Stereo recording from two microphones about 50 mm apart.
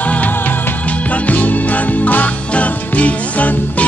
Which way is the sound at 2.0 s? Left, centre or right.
Left.